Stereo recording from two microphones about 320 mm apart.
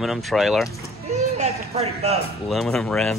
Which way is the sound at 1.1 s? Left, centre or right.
Centre.